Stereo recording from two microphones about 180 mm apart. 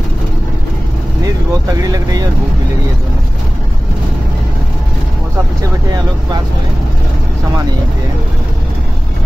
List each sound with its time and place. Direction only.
1.2 s speech: 20° right (ahead or behind)